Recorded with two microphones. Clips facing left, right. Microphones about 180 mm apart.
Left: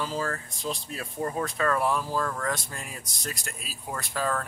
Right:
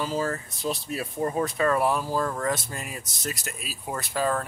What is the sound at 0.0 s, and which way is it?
Speech, 10° right (ahead or behind).